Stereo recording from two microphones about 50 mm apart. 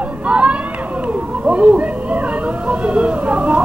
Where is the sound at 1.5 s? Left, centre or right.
Right.